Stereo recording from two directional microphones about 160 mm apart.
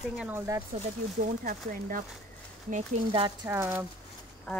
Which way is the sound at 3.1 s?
30° right (ahead or behind).